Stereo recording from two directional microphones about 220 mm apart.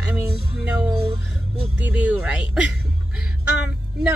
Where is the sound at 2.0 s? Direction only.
5° right (ahead or behind).